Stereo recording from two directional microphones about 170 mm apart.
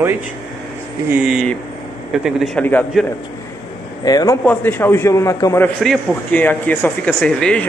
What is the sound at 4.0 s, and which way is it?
Speech, 20° left (ahead or behind).